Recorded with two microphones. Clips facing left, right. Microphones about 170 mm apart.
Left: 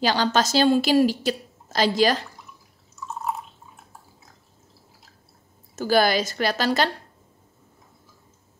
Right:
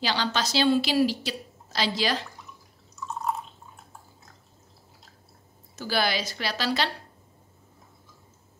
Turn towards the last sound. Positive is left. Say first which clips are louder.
# left 6 dB
turn(degrees=45)  # may be behind; listen again after turning